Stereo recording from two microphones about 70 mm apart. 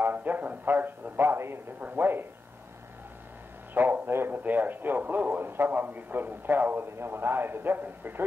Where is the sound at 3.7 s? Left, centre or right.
Right.